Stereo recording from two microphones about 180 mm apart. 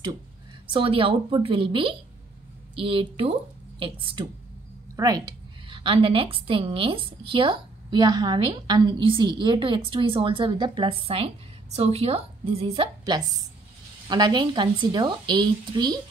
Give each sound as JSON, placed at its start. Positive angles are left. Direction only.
{"t": 0.7, "sound": "a woman's voice", "side_deg": -30}